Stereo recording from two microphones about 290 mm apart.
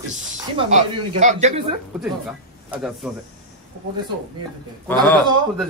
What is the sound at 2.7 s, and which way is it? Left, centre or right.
Speech, centre.